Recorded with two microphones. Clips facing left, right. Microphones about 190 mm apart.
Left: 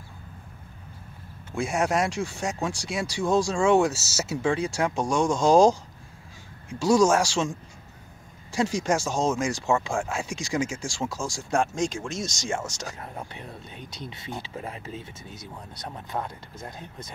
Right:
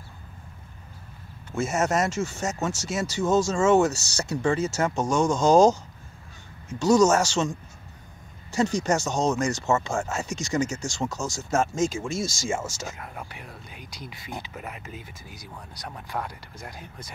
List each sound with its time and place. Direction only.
1.5 s speech: centre (ahead or behind)
13.0 s speech: 25° left (ahead or behind)